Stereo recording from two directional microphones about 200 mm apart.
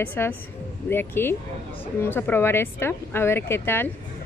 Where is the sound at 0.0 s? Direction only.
10° left (ahead or behind).